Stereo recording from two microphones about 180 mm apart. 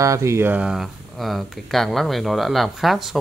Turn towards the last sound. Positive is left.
turn(degrees=0)  # may be behind; listen again after turning